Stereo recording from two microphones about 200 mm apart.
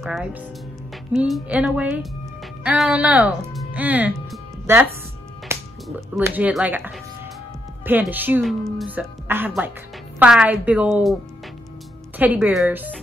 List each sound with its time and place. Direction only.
0.0 s speech: 5° right (ahead or behind)
5.5 s music: 15° right (ahead or behind)
5.9 s a woman's voice: 10° right (ahead or behind)
12.2 s a woman's voice: 10° right (ahead or behind)